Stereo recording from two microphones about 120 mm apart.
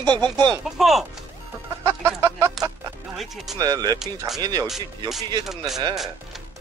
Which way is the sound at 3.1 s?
Centre (ahead or behind).